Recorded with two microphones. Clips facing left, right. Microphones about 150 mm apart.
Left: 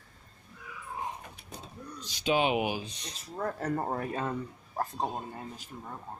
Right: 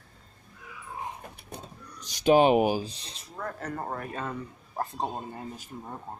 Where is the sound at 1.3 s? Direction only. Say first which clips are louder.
Right 3 dB; 55° right (ahead or behind); by 3.2 s 30° right (ahead or behind).